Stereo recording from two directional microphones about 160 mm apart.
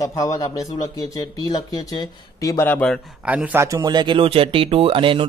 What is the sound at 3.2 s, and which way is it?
Speech, 10° right (ahead or behind).